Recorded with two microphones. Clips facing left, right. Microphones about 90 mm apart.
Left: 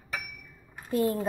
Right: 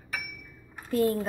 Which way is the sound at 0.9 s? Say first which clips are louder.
Right 1 dB; 20° left (ahead or behind).